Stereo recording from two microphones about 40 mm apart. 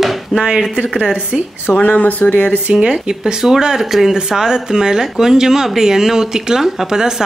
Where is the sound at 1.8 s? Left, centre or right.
Left.